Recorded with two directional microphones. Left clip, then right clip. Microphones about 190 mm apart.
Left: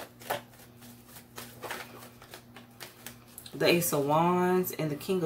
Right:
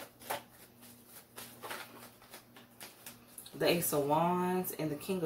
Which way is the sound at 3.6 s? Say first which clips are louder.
Left 5 dB; 30° left (ahead or behind).